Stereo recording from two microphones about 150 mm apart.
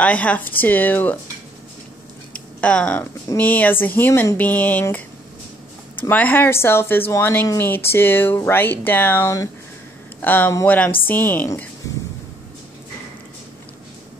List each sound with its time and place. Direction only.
0.0 s speech: 10° left (ahead or behind)
2.6 s speech: 10° left (ahead or behind)